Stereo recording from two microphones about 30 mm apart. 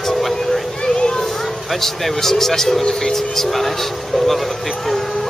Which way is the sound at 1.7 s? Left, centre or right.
Centre.